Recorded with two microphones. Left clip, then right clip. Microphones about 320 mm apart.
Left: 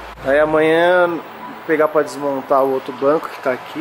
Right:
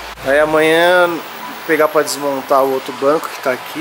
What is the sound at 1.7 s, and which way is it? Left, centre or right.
Speech, centre.